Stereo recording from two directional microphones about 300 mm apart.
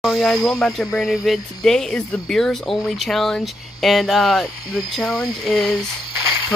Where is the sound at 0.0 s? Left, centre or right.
Centre.